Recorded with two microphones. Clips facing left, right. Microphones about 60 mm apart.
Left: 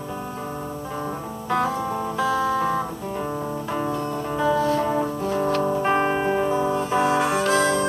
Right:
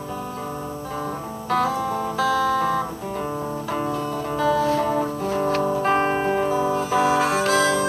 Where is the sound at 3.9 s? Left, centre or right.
Left.